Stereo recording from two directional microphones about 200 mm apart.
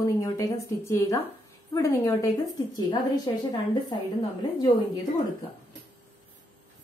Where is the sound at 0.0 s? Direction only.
15° left (ahead or behind).